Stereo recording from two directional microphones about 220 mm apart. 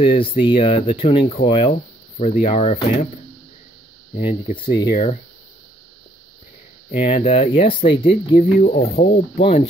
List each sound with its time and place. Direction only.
0.0 s speech: 25° left (ahead or behind)
4.2 s speech: 25° left (ahead or behind)
6.9 s speech: 30° left (ahead or behind)